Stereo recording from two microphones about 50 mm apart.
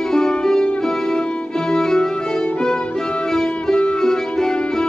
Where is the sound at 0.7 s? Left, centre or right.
Centre.